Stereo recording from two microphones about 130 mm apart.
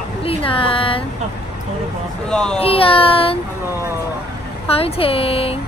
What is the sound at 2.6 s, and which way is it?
Speech, 45° left (ahead or behind).